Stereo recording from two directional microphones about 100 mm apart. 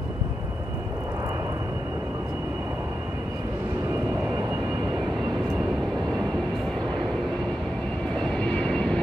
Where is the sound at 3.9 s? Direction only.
25° right (ahead or behind); by 5.1 s 40° right (ahead or behind).